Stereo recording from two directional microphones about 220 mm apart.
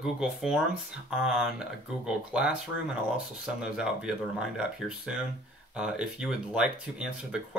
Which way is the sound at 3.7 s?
5° right (ahead or behind).